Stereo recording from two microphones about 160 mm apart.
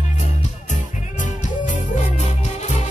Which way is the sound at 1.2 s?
50° left (ahead or behind).